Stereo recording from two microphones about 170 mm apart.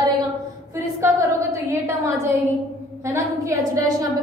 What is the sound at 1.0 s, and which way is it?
A woman's voice, 20° right (ahead or behind).